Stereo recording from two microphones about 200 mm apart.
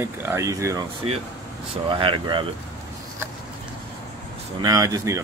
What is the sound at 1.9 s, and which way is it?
Speech, 25° right (ahead or behind).